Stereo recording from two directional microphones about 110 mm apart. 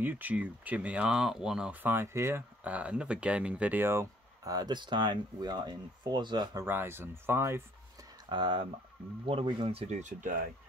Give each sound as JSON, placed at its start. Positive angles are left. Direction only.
{"t": 0.0, "sound": "speech", "side_deg": -15}
{"t": 6.6, "sound": "speech", "side_deg": -20}
{"t": 8.3, "sound": "speech", "side_deg": -45}